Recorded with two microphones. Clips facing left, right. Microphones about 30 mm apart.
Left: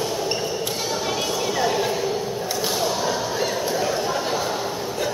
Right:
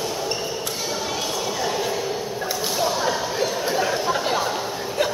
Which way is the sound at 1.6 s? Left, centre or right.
Centre.